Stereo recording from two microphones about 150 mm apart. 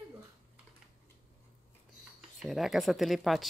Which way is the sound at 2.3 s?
Centre (ahead or behind).